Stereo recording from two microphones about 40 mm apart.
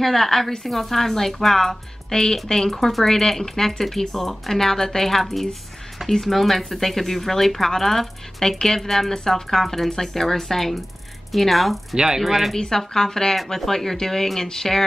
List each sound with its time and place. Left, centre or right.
0.0 s speech: centre
12.5 s speech: centre
13.4 s speech: centre
13.7 s speech: centre